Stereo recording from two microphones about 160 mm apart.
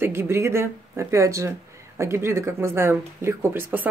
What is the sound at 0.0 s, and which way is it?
Speech, 15° right (ahead or behind).